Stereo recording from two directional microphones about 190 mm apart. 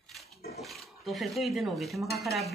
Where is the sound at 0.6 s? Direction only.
Centre (ahead or behind).